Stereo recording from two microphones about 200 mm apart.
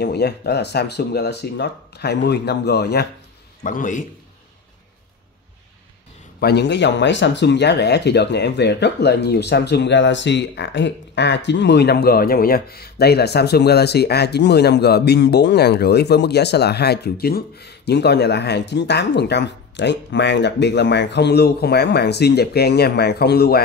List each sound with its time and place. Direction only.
0.0 s speech: 55° left (ahead or behind)
3.6 s a man's voice: 40° left (ahead or behind)
6.4 s speech: 55° left (ahead or behind)